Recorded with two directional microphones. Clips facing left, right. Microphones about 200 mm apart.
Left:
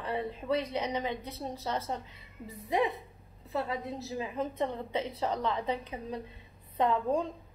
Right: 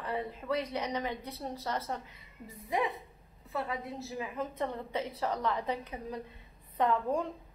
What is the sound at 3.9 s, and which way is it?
Speech, 35° left (ahead or behind).